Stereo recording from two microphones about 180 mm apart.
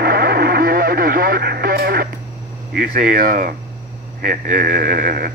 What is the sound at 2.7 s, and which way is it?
A man's voice, 55° right (ahead or behind).